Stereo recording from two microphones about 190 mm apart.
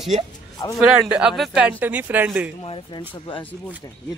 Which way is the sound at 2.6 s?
25° left (ahead or behind).